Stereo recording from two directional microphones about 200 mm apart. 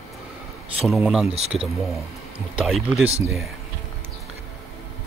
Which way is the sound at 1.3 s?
30° right (ahead or behind).